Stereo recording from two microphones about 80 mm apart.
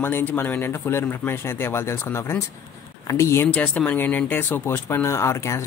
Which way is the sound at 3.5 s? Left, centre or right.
Centre.